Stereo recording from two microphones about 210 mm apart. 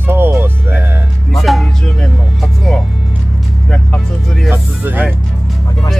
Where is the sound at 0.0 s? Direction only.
10° right (ahead or behind).